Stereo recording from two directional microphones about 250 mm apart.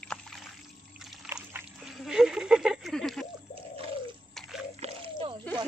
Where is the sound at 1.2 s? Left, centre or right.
Centre.